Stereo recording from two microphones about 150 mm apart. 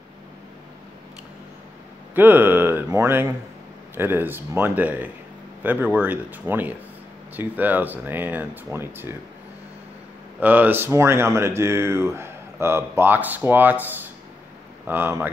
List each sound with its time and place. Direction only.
2.1 s speech: 15° right (ahead or behind)
10.4 s speech: 10° right (ahead or behind)